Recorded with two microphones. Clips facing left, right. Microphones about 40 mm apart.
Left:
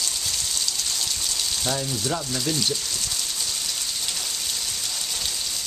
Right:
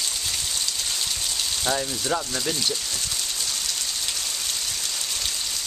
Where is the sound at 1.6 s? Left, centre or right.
Centre.